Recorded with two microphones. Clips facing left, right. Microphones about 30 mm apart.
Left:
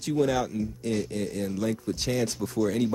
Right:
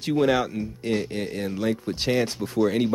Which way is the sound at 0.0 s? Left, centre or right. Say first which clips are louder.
Right 4 dB; right.